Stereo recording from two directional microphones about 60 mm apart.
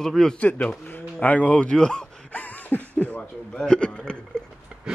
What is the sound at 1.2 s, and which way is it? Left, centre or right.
Speech, left.